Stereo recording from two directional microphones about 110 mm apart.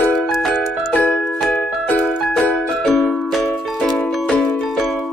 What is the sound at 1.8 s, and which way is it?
Music, 15° left (ahead or behind).